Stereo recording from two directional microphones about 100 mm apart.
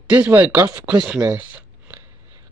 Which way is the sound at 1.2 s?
20° right (ahead or behind).